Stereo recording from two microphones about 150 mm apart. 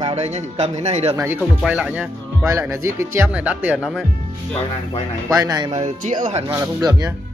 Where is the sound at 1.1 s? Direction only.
15° right (ahead or behind).